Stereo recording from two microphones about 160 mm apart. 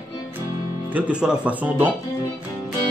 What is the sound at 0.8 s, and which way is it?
Speech, 10° right (ahead or behind).